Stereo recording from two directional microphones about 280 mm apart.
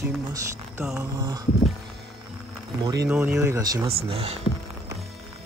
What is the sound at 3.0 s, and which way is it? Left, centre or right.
Speech, centre.